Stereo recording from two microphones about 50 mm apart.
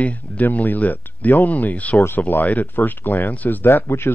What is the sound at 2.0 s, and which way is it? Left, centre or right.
Speech, left.